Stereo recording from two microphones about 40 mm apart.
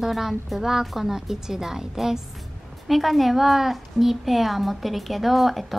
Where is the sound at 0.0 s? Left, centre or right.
Centre.